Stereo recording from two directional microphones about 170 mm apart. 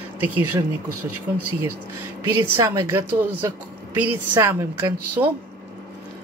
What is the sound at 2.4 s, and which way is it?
A woman's voice, 15° right (ahead or behind).